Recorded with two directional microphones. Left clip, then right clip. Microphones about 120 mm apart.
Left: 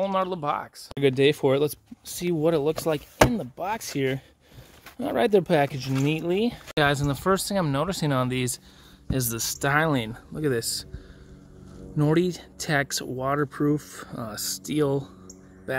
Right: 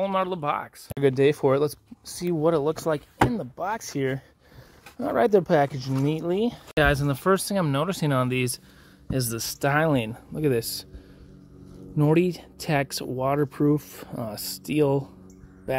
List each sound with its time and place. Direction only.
0.0 s speech: 20° right (ahead or behind)
0.9 s speech: 10° left (ahead or behind)
6.7 s speech: 15° right (ahead or behind)
9.6 s speech: 15° right (ahead or behind)
12.0 s speech: 15° right (ahead or behind)